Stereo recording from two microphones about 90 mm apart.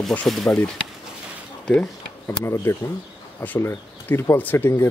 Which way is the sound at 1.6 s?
10° left (ahead or behind).